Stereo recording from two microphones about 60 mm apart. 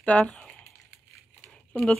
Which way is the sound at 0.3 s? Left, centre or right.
Centre.